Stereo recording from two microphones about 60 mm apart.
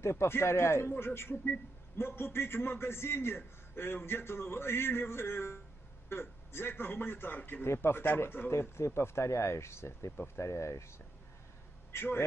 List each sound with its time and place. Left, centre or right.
0.0 s a man's voice: left
7.6 s a man's voice: left
8.5 s speech: left
11.9 s a man's voice: left